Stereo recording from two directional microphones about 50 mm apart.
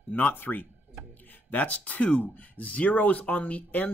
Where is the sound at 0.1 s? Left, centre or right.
Left.